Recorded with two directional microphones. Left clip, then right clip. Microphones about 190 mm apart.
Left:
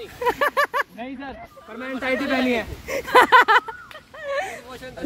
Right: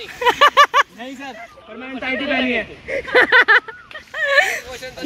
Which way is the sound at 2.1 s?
25° left (ahead or behind).